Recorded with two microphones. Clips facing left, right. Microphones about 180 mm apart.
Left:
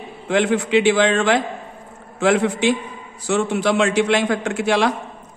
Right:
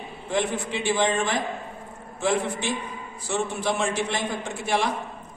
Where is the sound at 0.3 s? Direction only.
80° left.